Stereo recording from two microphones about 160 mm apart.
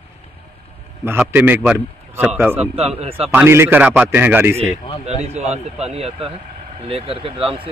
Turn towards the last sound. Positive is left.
turn(degrees=-35)  # may be behind; listen again after turning